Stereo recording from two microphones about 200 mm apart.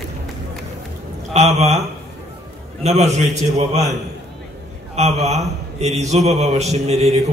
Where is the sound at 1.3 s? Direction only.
35° right (ahead or behind).